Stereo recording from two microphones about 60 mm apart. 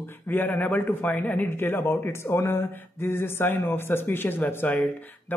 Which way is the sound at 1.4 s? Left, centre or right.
Left.